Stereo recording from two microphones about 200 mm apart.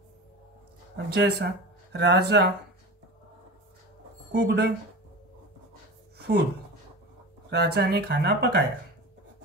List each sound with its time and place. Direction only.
0.9 s speech: 55° right (ahead or behind)
4.3 s speech: 55° right (ahead or behind)
6.1 s a sound: 55° right (ahead or behind)
7.4 s speech: 55° right (ahead or behind)